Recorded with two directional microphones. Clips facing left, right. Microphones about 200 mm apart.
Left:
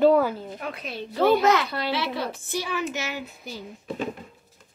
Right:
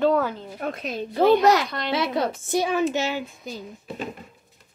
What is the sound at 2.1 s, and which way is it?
Speech, 50° right (ahead or behind).